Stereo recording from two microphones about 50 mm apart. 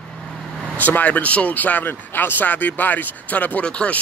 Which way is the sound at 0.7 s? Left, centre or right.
Left.